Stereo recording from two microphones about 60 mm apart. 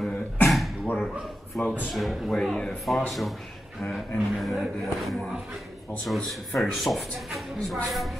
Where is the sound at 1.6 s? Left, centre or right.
Left.